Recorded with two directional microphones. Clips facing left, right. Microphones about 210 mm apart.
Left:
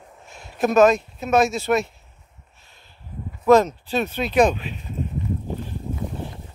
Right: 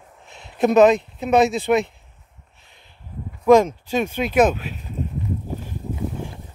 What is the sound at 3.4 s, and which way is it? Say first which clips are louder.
Speech: right 2 dB; 10° right (ahead or behind).